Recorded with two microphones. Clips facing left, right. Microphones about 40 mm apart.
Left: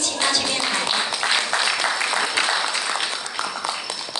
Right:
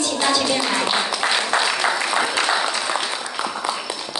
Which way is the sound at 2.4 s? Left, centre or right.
Centre.